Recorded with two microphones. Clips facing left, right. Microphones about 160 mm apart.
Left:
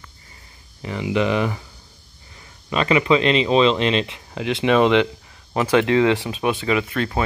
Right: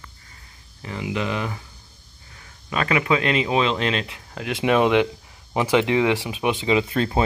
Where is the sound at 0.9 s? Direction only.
Centre (ahead or behind).